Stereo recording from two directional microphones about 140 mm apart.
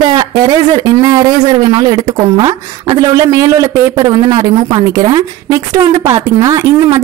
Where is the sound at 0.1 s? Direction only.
30° right (ahead or behind).